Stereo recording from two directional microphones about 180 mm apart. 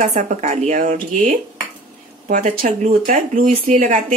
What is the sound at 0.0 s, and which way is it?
Speech, 40° right (ahead or behind).